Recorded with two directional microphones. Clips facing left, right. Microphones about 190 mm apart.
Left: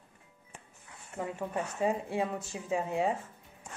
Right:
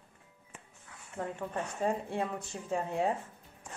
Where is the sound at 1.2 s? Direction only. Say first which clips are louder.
Left 2 dB; 10° left (ahead or behind).